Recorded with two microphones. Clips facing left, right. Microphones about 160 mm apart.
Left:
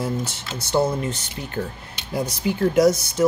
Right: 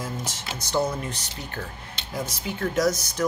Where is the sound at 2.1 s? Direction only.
30° left (ahead or behind).